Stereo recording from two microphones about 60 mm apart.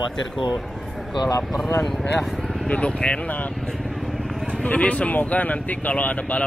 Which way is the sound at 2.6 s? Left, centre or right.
Centre.